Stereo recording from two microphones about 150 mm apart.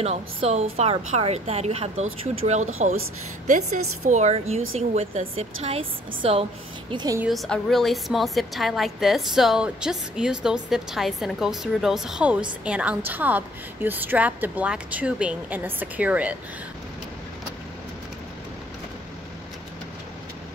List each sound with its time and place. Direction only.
0.0 s a woman's voice: 45° right (ahead or behind); by 7.2 s 30° right (ahead or behind)
7.2 s a woman's voice: 5° left (ahead or behind)